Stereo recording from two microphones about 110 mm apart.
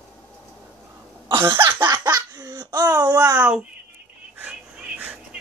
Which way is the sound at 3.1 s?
40° right (ahead or behind).